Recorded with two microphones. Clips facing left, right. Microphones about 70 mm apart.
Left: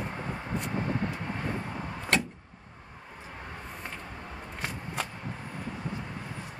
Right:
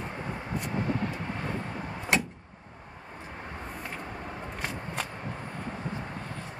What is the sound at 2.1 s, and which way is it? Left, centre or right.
Vehicle, centre.